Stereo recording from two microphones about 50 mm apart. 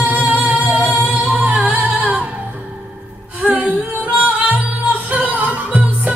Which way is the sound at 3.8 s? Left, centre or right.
Right.